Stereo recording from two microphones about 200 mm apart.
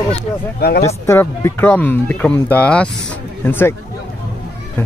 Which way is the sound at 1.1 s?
10° left (ahead or behind).